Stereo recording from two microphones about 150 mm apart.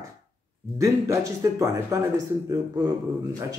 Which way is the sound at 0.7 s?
20° right (ahead or behind).